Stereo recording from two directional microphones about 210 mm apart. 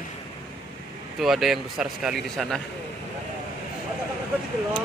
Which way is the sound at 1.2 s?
Centre (ahead or behind).